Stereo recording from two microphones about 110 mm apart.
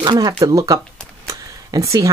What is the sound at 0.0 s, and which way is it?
Speech, 40° right (ahead or behind).